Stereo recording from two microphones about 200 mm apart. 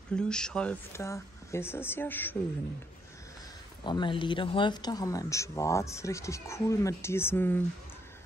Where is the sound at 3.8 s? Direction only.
25° left (ahead or behind).